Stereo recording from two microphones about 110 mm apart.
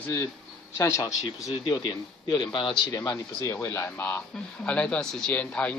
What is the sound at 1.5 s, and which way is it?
A man's voice, 45° left (ahead or behind).